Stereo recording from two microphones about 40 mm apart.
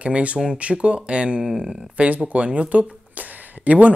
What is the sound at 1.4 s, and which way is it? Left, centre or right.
Speech, centre.